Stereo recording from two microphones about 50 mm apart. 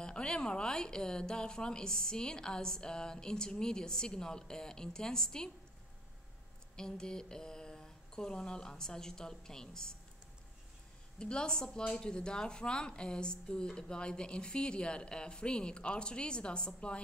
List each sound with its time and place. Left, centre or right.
0.0 s a woman's voice: centre
6.8 s a woman's voice: centre
11.1 s a woman's voice: centre